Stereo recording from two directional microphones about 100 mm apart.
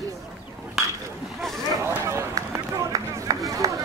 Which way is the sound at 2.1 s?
30° right (ahead or behind).